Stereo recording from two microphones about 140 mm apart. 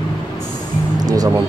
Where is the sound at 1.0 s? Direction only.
25° right (ahead or behind).